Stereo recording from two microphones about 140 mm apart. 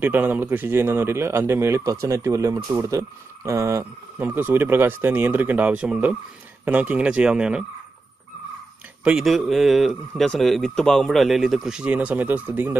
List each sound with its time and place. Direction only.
0.0 s a man's voice: 15° right (ahead or behind)
9.0 s speech: 5° right (ahead or behind)